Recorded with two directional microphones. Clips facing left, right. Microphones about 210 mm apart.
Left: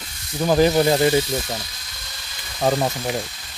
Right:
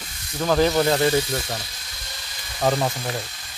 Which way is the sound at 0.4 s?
15° left (ahead or behind).